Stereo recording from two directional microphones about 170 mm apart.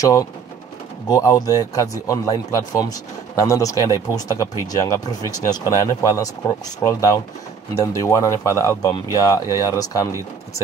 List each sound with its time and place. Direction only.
0.0 s speech: 20° left (ahead or behind)